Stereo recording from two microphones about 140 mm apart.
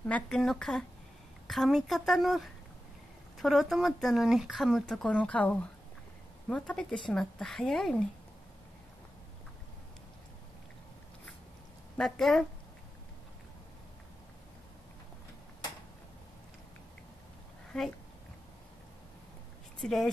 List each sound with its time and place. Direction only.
0.0 s speech: 5° left (ahead or behind)
12.0 s speech: centre (ahead or behind)
17.7 s speech: 5° left (ahead or behind)
19.8 s speech: centre (ahead or behind)